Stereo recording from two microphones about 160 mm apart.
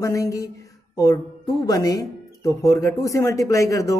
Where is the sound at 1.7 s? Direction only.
20° left (ahead or behind).